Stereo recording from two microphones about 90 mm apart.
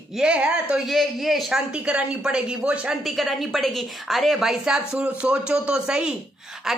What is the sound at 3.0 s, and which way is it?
A woman's voice, centre (ahead or behind).